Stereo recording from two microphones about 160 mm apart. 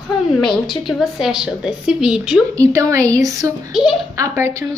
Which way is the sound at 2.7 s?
20° right (ahead or behind).